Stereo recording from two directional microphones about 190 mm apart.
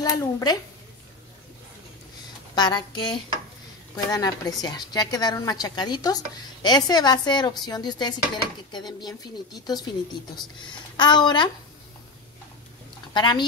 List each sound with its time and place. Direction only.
0.0 s a woman's voice: 20° left (ahead or behind)
2.5 s a woman's voice: 20° left (ahead or behind)
11.0 s a woman's voice: 25° left (ahead or behind)
13.1 s a woman's voice: 25° left (ahead or behind)